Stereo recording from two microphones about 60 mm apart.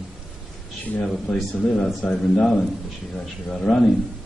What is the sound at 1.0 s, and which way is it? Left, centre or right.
A man's voice, centre.